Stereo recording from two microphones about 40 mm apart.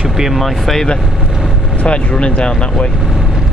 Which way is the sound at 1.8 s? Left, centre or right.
Left.